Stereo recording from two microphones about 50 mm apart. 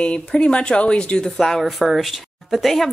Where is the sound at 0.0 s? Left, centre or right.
Left.